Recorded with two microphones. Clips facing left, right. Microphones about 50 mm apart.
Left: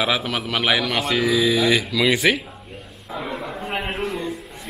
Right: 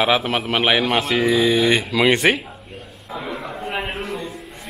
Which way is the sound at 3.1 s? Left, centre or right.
Centre.